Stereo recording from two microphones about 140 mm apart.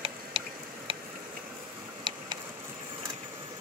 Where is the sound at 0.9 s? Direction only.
40° right (ahead or behind).